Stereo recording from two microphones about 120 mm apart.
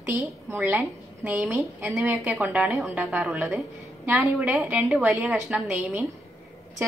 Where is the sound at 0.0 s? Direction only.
20° right (ahead or behind).